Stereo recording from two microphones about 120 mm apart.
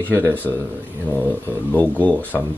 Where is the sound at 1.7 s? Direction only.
15° left (ahead or behind).